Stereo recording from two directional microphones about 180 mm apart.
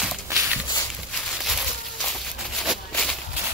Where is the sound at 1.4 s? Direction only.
Centre (ahead or behind).